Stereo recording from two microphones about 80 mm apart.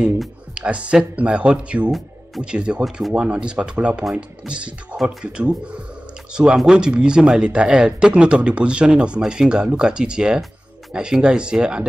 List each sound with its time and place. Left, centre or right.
0.6 s speech: centre
1.9 s music: centre
2.4 s speech: centre